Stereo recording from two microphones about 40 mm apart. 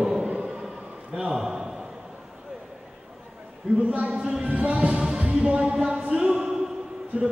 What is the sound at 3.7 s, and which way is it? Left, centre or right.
A man's voice, right.